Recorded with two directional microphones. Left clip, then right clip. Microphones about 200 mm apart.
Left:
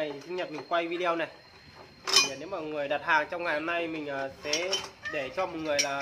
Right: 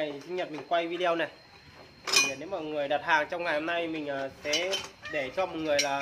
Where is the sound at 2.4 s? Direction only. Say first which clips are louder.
Right 1 dB; 10° right (ahead or behind).